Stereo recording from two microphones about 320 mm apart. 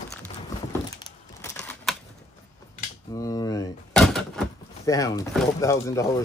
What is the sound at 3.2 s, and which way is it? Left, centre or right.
Door, centre.